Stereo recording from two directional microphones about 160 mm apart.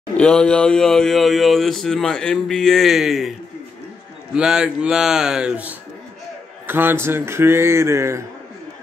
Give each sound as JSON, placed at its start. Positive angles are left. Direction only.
{"t": 0.2, "sound": "speech", "side_deg": 5}